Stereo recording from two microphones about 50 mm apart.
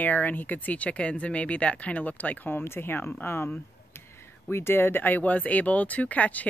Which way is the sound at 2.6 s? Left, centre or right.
Left.